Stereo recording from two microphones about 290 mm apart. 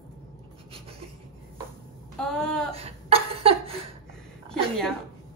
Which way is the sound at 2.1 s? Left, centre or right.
Centre.